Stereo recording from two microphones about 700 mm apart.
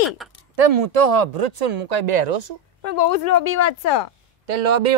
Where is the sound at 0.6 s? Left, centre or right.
Right.